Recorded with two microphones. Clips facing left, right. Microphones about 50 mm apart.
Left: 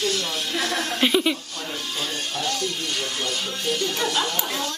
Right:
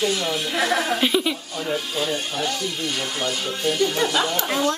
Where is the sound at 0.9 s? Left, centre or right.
Centre.